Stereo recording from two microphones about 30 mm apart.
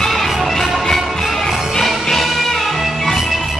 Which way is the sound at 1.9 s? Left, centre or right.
Centre.